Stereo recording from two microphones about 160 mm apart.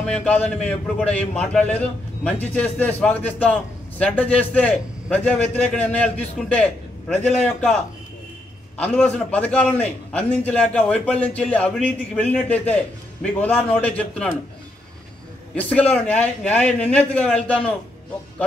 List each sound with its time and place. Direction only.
0.0 s a man's voice: 5° left (ahead or behind)
8.7 s a man's voice: 10° left (ahead or behind)
15.9 s a man's voice: 5° left (ahead or behind)